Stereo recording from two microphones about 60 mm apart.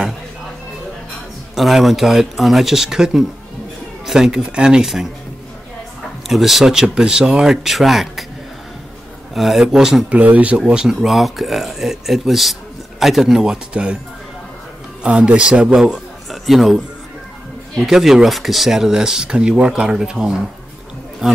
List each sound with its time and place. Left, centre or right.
1.5 s speech: centre
6.2 s speech: centre
9.3 s speech: centre
10.1 s speech: right
10.6 s speech: centre
15.0 s speech: centre
15.7 s a man's voice: centre
17.8 s speech: centre